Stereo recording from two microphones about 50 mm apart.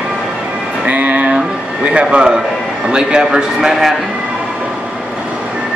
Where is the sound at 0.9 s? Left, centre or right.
Right; by 3.9 s centre.